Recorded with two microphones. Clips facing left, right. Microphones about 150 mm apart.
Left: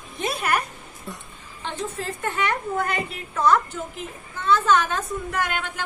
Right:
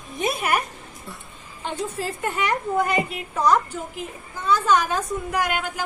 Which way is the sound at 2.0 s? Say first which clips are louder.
Left 1 dB; 10° right (ahead or behind).